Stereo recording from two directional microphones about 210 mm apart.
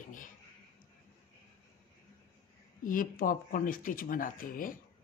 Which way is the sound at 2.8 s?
40° left (ahead or behind).